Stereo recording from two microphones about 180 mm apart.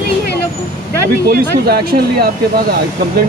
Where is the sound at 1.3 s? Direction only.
55° right (ahead or behind).